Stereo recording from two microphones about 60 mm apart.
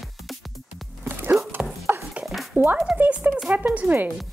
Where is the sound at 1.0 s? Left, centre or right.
Right.